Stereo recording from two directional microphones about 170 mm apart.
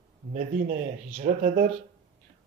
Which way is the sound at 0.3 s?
50° right (ahead or behind).